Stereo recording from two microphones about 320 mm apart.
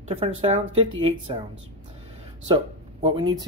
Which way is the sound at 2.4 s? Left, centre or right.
Centre.